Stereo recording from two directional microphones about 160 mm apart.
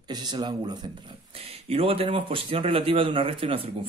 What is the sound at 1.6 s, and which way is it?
A man's voice, 40° right (ahead or behind).